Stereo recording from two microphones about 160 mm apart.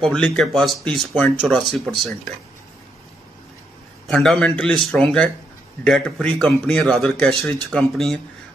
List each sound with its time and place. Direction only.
0.0 s a man's voice: 5° left (ahead or behind)
4.1 s a man's voice: centre (ahead or behind)